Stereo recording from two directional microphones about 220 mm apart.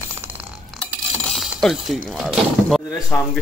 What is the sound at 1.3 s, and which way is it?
Mechanisms, centre (ahead or behind).